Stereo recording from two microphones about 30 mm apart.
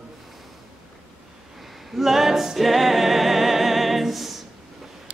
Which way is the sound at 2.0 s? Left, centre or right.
Centre.